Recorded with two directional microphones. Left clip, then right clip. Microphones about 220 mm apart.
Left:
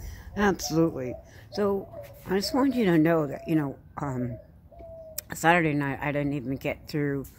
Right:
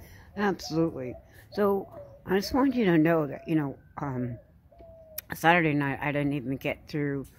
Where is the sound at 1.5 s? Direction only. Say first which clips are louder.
Right 1 dB; 25° right (ahead or behind).